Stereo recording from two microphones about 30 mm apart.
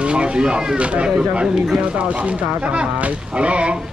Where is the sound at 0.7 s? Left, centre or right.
Right.